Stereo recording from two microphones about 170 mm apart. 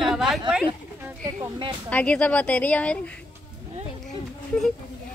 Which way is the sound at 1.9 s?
10° left (ahead or behind).